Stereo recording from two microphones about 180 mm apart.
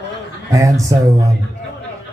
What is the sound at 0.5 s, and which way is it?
Speech, 15° right (ahead or behind).